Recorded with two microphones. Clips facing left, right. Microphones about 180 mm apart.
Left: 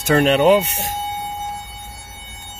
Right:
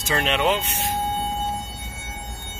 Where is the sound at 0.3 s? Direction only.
40° left (ahead or behind).